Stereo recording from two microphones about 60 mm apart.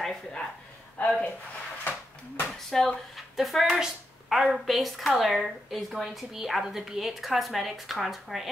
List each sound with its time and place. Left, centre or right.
0.0 s speech: centre
0.9 s speech: left
2.7 s speech: centre
3.3 s a woman's voice: centre